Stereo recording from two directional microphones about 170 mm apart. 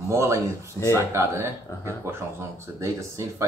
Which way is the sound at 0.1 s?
15° right (ahead or behind).